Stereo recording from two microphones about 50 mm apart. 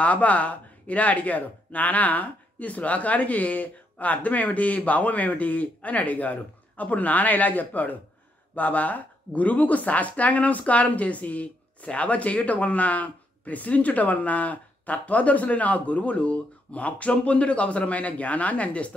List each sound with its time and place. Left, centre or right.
0.0 s a woman's voice: left